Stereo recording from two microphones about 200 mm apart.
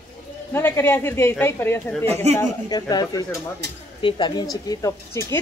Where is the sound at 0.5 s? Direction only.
10° left (ahead or behind).